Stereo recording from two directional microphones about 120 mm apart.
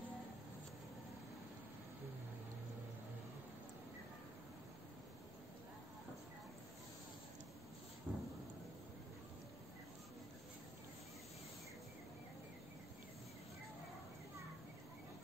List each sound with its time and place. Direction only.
8.1 s thunder: 15° right (ahead or behind)